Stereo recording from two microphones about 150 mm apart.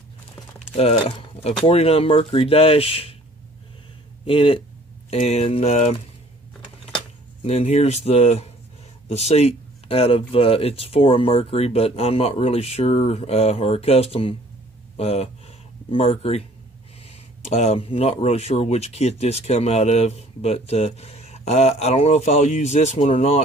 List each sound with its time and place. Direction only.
0.6 s speech: 45° left (ahead or behind)
4.3 s speech: 40° left (ahead or behind)
7.4 s speech: 45° left (ahead or behind)